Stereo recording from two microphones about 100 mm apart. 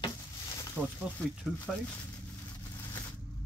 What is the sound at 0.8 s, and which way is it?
Speech, 20° right (ahead or behind).